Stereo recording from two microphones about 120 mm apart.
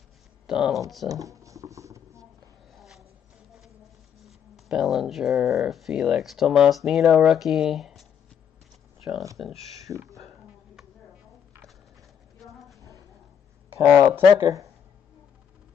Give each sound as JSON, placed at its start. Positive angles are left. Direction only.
{"t": 0.5, "sound": "speech", "side_deg": -5}
{"t": 1.2, "sound": "a sound", "side_deg": -25}
{"t": 2.7, "sound": "a sound", "side_deg": 0}
{"t": 4.3, "sound": "speech", "side_deg": -5}
{"t": 9.4, "sound": "speech", "side_deg": 0}
{"t": 9.8, "sound": "speech", "side_deg": -25}
{"t": 13.8, "sound": "speech", "side_deg": -20}